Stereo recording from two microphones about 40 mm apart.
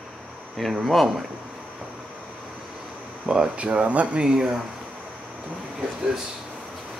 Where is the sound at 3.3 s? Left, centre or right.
Right.